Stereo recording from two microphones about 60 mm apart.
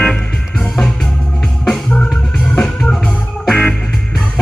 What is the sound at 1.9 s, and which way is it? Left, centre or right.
Music, left.